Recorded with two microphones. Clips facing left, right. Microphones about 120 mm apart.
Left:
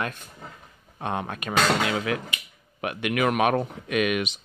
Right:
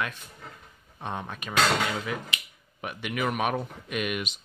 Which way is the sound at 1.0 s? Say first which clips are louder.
Left 5 dB; 65° left (ahead or behind).